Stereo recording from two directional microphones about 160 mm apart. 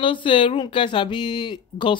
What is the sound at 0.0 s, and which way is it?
Speech, 30° left (ahead or behind).